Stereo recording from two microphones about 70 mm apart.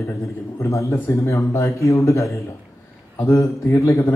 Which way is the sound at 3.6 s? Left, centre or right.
Left.